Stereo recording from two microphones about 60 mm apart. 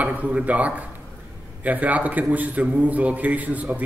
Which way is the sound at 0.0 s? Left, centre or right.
Right.